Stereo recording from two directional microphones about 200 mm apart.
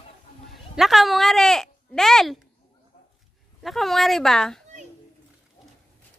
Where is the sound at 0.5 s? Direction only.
Centre (ahead or behind).